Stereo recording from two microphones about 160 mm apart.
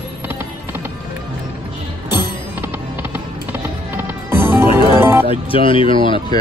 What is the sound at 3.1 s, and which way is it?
Music, 10° right (ahead or behind).